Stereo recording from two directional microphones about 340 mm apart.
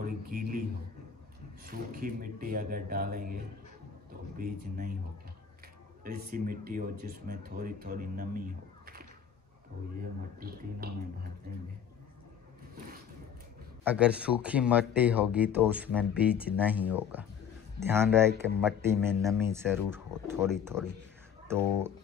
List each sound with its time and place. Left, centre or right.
0.0 s a man's voice: right
6.0 s speech: right
10.4 s speech: right
13.8 s speech: centre